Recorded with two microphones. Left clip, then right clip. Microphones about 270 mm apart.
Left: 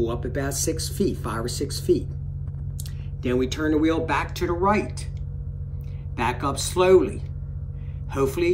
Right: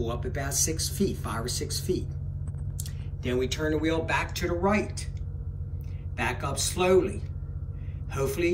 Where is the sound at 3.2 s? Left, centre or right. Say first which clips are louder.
Left 4 dB; centre.